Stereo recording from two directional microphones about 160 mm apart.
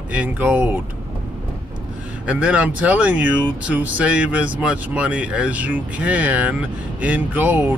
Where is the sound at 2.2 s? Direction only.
10° right (ahead or behind).